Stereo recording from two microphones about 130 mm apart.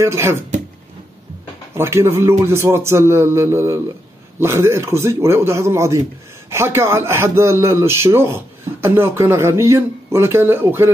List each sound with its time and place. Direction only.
0.0 s speech: 20° right (ahead or behind)
1.8 s speech: 20° right (ahead or behind)